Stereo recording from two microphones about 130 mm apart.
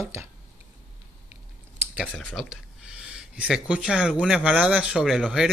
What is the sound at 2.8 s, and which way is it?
Speech, 5° right (ahead or behind).